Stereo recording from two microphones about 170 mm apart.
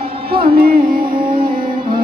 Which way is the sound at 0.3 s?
60° right (ahead or behind).